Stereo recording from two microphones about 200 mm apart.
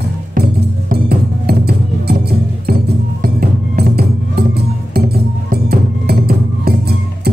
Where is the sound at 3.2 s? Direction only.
50° right (ahead or behind).